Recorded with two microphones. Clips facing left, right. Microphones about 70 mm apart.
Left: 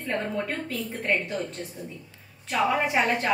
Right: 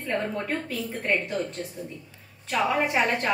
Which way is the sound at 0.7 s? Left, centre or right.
Centre.